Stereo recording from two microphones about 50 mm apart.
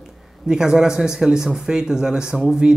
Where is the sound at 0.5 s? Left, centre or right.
Centre.